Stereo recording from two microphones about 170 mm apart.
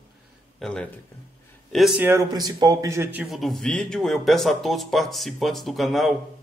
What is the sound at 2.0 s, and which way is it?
A man's voice, 20° right (ahead or behind).